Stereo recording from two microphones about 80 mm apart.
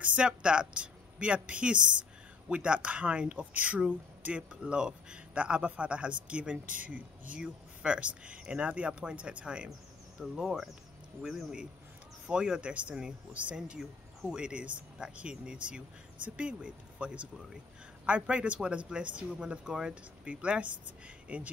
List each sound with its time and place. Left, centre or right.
0.0 s speech: centre